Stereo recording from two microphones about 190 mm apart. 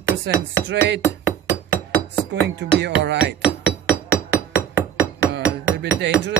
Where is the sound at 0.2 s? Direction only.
70° right (ahead or behind).